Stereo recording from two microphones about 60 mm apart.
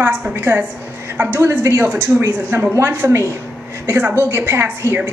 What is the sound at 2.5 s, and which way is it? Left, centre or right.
Speech, right.